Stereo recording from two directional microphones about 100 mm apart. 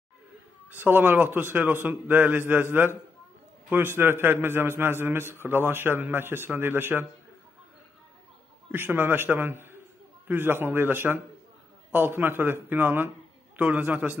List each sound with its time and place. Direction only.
0.7 s a man's voice: 20° right (ahead or behind)
8.7 s a man's voice: 20° right (ahead or behind)